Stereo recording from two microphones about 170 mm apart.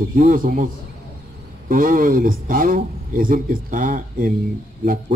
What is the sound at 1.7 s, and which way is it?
A man's voice, 55° right (ahead or behind).